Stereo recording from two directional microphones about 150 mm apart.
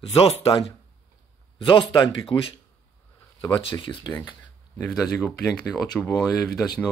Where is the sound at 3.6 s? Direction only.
30° left (ahead or behind).